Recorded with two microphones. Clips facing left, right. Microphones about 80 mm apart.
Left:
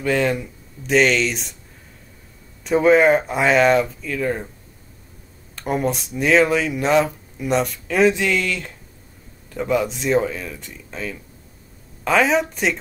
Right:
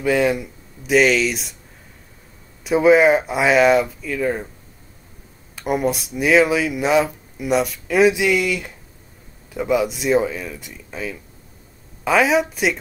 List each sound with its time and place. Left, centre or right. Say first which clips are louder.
0.0 s speech: right 2 dB; centre
2.6 s speech: right 1 dB; centre
5.6 s speech: right 1 dB; centre